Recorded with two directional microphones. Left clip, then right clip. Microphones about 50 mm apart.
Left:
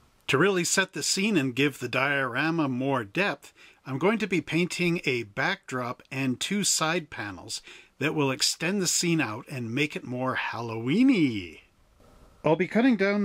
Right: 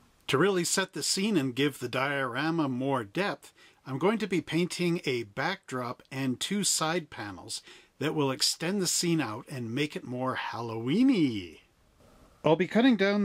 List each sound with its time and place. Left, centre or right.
0.3 s speech: centre
12.4 s speech: right